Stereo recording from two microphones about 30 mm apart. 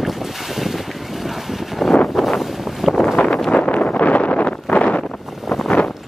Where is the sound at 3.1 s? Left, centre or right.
Left.